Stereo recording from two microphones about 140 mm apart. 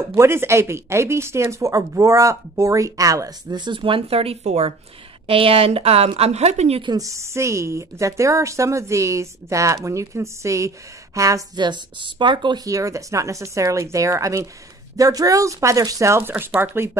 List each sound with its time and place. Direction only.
0.0 s a woman's voice: 20° right (ahead or behind); by 6.8 s 50° right (ahead or behind)
6.8 s speech: 25° right (ahead or behind)